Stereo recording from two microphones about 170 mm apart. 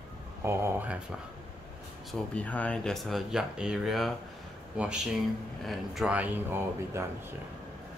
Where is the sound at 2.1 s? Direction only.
5° left (ahead or behind); by 7.1 s 15° right (ahead or behind).